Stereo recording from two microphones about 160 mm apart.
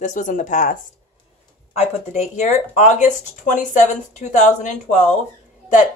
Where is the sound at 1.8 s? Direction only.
45° left (ahead or behind).